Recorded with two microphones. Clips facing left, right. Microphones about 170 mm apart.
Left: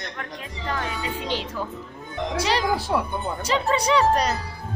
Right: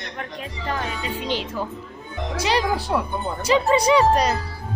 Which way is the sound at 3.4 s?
10° right (ahead or behind).